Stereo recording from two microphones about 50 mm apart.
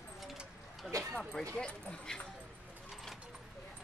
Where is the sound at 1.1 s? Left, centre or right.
Centre.